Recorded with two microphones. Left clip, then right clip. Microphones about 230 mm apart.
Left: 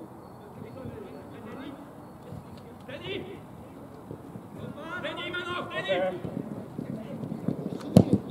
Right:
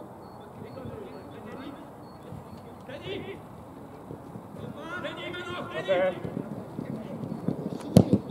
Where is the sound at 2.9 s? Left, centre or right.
Centre.